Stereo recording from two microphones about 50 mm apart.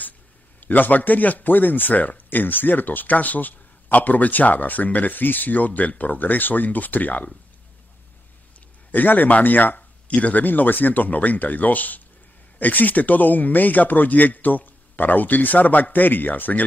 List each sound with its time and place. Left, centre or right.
0.6 s speech: left
8.9 s speech: left